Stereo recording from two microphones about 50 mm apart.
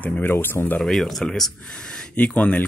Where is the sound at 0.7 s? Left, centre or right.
Centre.